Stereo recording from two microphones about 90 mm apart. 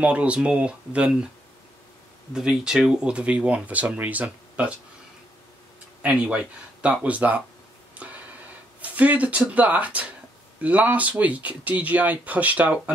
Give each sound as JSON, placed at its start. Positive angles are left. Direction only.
{"t": 0.0, "sound": "speech", "side_deg": -15}
{"t": 2.3, "sound": "speech", "side_deg": -5}
{"t": 6.0, "sound": "speech", "side_deg": -15}
{"t": 8.0, "sound": "a sound", "side_deg": -15}
{"t": 8.8, "sound": "speech", "side_deg": -15}